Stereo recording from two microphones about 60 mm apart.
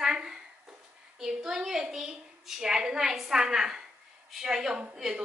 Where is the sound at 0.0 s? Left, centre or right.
Centre.